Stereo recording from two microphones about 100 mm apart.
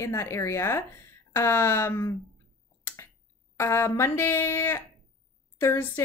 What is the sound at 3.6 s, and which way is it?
Speech, 30° left (ahead or behind).